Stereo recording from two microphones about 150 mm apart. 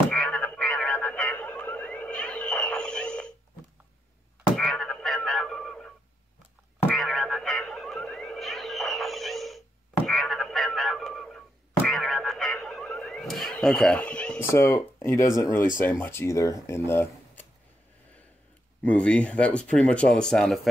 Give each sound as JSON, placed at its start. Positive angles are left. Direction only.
{"t": 0.1, "sound": "frog", "side_deg": 5}
{"t": 4.6, "sound": "frog", "side_deg": 0}
{"t": 10.0, "sound": "a sound", "side_deg": 0}
{"t": 14.5, "sound": "speech", "side_deg": 20}
{"t": 18.8, "sound": "speech", "side_deg": 10}